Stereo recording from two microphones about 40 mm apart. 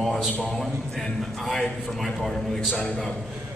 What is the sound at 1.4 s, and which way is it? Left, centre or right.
A man's voice, centre.